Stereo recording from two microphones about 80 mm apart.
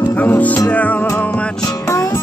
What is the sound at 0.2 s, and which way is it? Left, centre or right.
Music, centre.